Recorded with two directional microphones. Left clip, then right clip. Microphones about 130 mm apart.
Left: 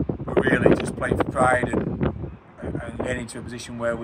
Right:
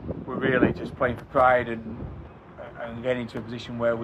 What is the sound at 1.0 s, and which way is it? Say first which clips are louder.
Speech: even; 20° left (ahead or behind).